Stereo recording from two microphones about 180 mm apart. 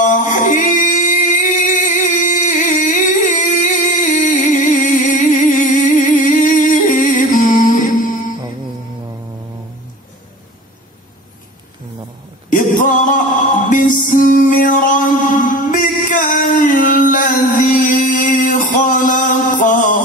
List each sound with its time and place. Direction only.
0.0 s singing: 45° left (ahead or behind)
12.8 s music: 45° left (ahead or behind)